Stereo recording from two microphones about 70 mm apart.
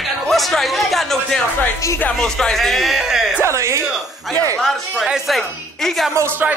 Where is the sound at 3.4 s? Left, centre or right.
Right.